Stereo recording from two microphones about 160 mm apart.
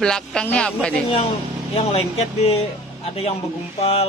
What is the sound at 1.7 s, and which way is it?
Speech, 40° left (ahead or behind).